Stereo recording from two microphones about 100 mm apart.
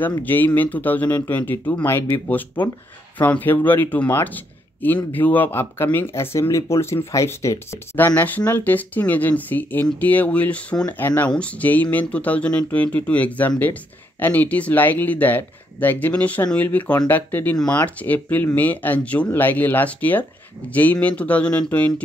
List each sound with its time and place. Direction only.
0.2 s speech: 15° left (ahead or behind)